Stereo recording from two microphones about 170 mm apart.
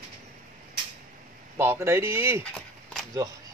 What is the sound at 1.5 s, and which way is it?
Speech, 15° right (ahead or behind).